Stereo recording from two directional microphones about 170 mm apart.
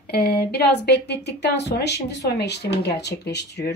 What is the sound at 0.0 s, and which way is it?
Speech, 70° left (ahead or behind).